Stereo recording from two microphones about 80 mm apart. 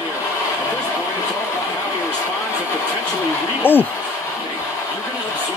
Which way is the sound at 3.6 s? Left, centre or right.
Left.